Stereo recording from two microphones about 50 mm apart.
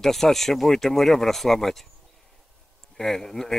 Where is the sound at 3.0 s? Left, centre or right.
Centre.